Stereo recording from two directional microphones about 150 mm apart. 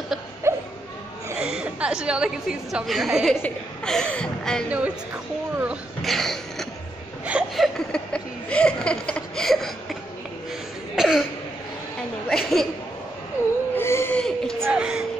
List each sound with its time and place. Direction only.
0.5 s a sound: 20° right (ahead or behind)
1.4 s a woman's voice: 5° right (ahead or behind)
4.6 s a woman's voice: 10° right (ahead or behind)
6.0 s a woman's voice: centre (ahead or behind)
11.0 s cough: 5° right (ahead or behind)
12.3 s a woman's voice: centre (ahead or behind)
13.4 s whimper: 15° left (ahead or behind)
13.7 s a sound: 15° left (ahead or behind)
14.2 s a sound: 5° left (ahead or behind)